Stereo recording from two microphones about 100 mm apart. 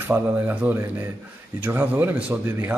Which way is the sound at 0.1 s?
20° right (ahead or behind).